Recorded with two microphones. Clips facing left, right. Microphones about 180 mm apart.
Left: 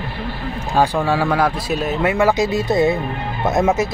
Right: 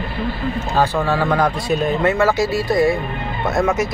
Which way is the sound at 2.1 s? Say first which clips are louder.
Left 1 dB; 15° left (ahead or behind).